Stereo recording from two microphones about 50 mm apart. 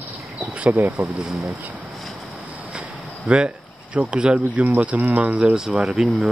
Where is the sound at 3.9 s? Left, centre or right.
Right.